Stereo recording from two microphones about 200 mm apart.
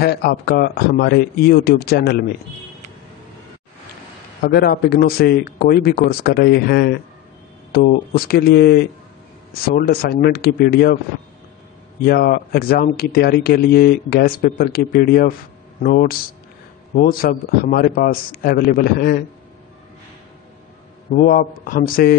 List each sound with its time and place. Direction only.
0.0 s speech: 50° left (ahead or behind)
4.4 s speech: 50° left (ahead or behind)
12.0 s speech: 50° left (ahead or behind)
21.1 s speech: 45° left (ahead or behind)